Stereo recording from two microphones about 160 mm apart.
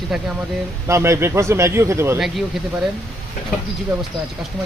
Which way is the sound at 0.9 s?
15° right (ahead or behind).